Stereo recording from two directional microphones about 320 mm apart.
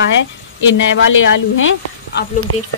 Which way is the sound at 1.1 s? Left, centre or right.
Left.